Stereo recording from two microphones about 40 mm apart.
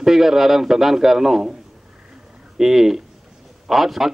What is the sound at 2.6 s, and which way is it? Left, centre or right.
A man's voice, centre.